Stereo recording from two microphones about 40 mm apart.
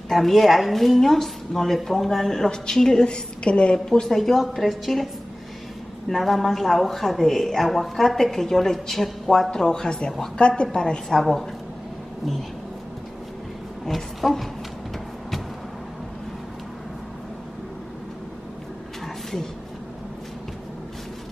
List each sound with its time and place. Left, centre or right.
0.1 s a woman's voice: centre; by 3.7 s left
3.7 s a woman's voice: centre
6.0 s a woman's voice: centre
9.5 s a woman's voice: centre
11.1 s a woman's voice: centre
13.8 s a woman's voice: centre